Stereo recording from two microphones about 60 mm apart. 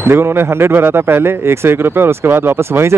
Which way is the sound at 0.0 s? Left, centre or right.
Right.